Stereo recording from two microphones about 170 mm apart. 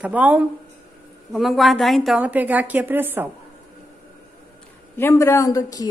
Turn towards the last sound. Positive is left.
turn(degrees=20)  # may be behind; listen again after turning